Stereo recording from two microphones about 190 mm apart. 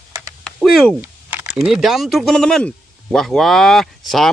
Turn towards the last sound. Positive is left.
turn(degrees=0)  # may be behind; listen again after turning